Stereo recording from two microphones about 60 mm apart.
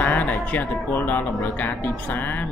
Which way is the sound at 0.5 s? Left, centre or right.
Left.